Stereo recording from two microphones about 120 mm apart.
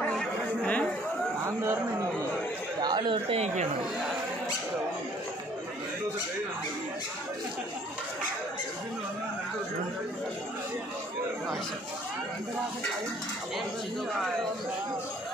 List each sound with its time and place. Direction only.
0.0 s chatter: 5° left (ahead or behind)
1.6 s a sound: 25° right (ahead or behind)
2.8 s chatter: 40° right (ahead or behind)